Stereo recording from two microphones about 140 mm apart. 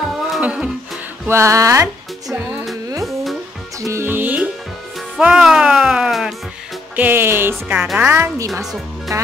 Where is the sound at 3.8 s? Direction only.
20° right (ahead or behind).